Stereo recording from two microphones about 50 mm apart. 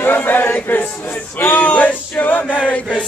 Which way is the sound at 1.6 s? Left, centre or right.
Left.